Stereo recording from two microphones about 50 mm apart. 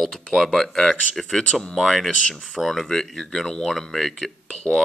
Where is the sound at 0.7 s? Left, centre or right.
Centre.